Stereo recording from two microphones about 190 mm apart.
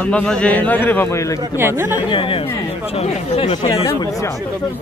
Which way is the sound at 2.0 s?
25° left (ahead or behind).